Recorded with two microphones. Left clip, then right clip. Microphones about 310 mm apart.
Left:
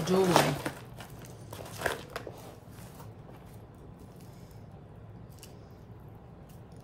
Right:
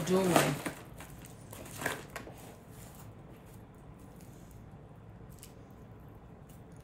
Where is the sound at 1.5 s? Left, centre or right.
Centre.